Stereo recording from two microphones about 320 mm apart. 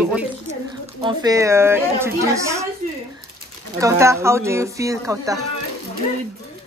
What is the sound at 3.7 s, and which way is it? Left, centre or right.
Speech, centre.